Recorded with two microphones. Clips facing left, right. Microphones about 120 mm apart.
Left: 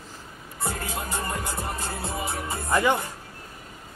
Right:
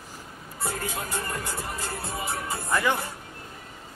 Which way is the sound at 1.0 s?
15° left (ahead or behind).